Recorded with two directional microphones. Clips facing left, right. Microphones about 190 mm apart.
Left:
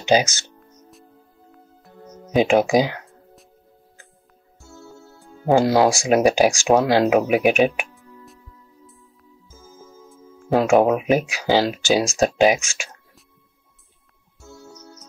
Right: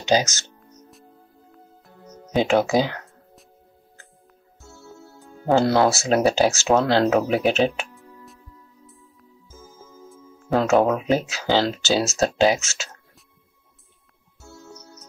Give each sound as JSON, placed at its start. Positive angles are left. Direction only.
{"t": 0.0, "sound": "speech", "side_deg": 15}
{"t": 0.6, "sound": "music", "side_deg": 0}
{"t": 2.3, "sound": "speech", "side_deg": 15}
{"t": 5.5, "sound": "speech", "side_deg": 15}
{"t": 10.5, "sound": "speech", "side_deg": 15}